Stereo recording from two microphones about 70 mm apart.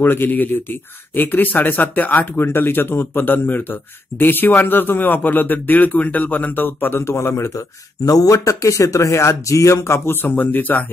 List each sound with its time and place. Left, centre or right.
0.0 s speech: left